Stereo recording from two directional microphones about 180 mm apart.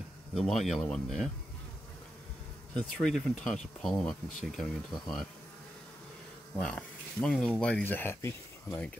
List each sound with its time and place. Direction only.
0.3 s speech: centre (ahead or behind)
2.7 s speech: 5° left (ahead or behind)
6.5 s speech: 5° left (ahead or behind)